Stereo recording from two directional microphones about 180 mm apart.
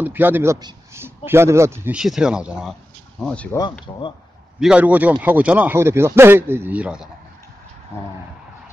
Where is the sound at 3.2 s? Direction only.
5° left (ahead or behind).